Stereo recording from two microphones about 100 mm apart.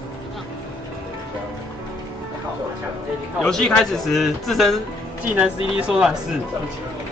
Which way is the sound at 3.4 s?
5° left (ahead or behind).